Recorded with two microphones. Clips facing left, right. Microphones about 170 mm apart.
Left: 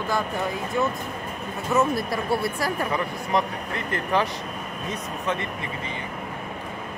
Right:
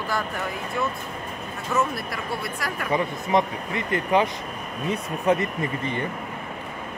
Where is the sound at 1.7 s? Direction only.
20° left (ahead or behind).